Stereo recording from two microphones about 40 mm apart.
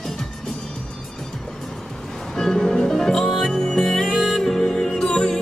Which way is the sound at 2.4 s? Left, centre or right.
Centre.